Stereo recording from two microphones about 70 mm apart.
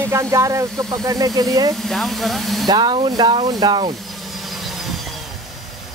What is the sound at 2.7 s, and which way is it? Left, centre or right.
Speech, right.